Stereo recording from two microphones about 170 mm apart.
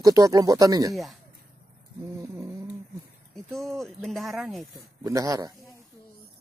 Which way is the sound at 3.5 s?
Centre (ahead or behind).